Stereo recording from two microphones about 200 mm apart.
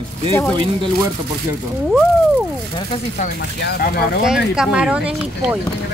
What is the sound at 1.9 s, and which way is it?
Speech, centre (ahead or behind).